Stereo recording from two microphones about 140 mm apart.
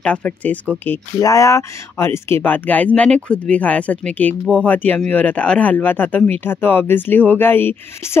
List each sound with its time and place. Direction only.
0.0 s speech: 10° left (ahead or behind)
1.2 s speech: 25° left (ahead or behind)